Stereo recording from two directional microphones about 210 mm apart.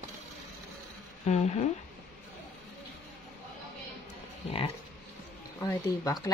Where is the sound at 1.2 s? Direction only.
30° left (ahead or behind).